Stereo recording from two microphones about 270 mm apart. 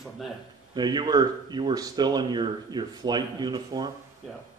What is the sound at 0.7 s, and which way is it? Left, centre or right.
Speech, centre.